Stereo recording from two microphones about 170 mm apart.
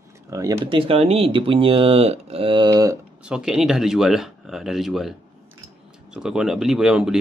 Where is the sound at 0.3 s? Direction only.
20° right (ahead or behind).